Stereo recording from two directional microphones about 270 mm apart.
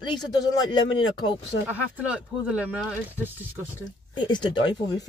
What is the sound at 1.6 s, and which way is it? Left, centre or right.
Speech, centre.